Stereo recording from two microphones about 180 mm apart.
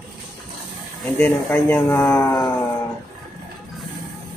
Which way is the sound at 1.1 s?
10° left (ahead or behind).